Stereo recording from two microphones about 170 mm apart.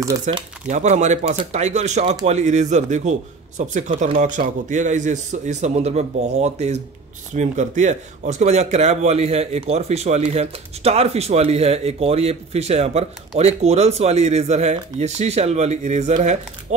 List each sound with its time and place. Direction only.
0.3 s speech: 40° right (ahead or behind)